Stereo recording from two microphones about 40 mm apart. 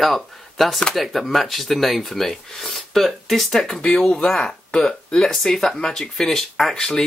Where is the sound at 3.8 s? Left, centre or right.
Centre.